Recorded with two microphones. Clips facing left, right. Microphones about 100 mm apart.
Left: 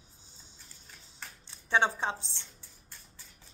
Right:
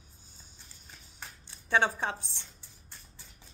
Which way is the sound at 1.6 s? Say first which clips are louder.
Even; 20° left (ahead or behind).